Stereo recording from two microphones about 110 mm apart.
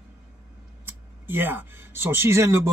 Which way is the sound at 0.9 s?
20° right (ahead or behind).